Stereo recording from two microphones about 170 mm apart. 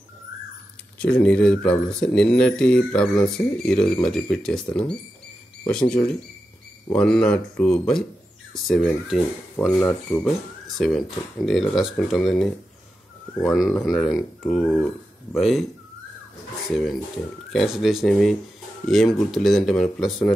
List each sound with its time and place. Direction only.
0.9 s speech: 5° left (ahead or behind)
9.8 s speech: 15° left (ahead or behind)
10.8 s speech: centre (ahead or behind)
15.3 s speech: centre (ahead or behind)
16.6 s speech: centre (ahead or behind)